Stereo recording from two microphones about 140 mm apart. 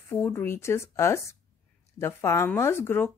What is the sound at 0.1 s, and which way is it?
Speech, 15° left (ahead or behind).